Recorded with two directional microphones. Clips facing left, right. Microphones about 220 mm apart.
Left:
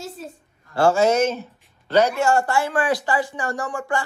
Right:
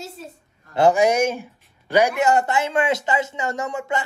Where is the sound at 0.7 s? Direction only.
15° right (ahead or behind).